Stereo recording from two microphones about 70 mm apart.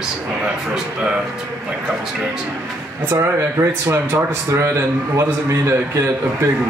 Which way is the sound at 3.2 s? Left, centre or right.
Right.